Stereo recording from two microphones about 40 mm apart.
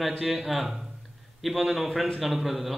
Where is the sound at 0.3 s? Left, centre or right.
Centre.